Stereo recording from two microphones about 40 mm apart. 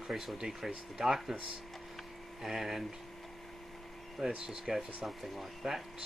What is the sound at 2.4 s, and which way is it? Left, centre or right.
Speech, centre.